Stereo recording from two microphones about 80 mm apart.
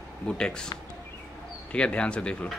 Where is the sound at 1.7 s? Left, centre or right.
Centre.